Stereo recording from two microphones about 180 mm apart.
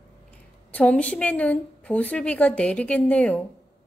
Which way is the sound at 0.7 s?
5° left (ahead or behind).